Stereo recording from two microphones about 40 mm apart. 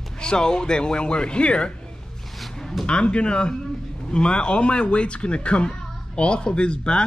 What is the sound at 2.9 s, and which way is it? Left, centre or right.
A man's voice, left.